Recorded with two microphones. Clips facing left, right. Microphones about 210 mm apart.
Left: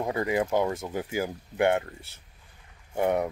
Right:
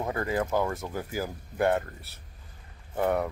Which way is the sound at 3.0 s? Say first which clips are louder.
Left 1 dB; 20° left (ahead or behind).